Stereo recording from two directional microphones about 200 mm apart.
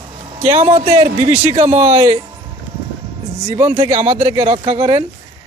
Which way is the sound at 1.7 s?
15° right (ahead or behind).